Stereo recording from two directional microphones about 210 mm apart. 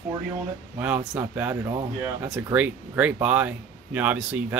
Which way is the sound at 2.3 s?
5° right (ahead or behind).